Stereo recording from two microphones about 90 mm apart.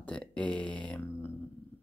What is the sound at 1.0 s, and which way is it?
Speech, 25° left (ahead or behind).